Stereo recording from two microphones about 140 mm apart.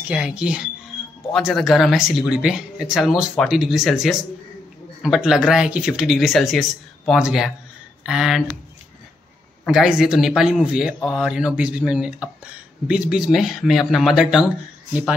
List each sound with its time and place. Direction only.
0.1 s speech: 5° right (ahead or behind)
9.7 s speech: 5° right (ahead or behind)